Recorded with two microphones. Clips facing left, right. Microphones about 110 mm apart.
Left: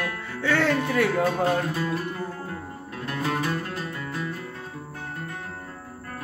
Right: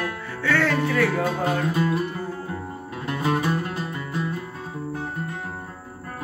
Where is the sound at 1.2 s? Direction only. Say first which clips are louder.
Left 1 dB; 15° right (ahead or behind).